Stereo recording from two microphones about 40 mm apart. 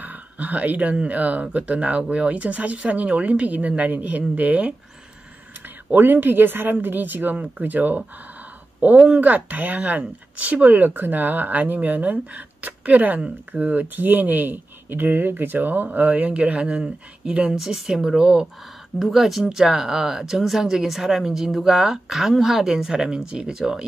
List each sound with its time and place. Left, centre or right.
0.0 s speech: right
5.9 s speech: right
9.2 s speech: right
16.7 s speech: centre
18.9 s speech: centre